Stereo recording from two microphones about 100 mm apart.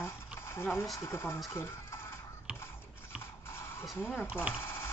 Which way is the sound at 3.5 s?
25° left (ahead or behind).